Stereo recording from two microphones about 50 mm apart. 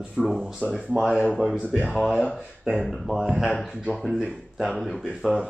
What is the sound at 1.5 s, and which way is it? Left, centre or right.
Speech, right.